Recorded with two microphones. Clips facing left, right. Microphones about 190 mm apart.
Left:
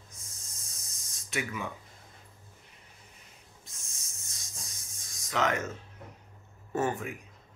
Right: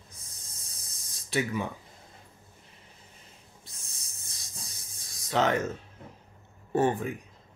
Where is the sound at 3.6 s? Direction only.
35° right (ahead or behind).